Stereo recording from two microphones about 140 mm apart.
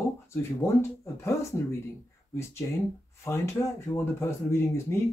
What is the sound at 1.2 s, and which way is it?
Speech, 20° left (ahead or behind).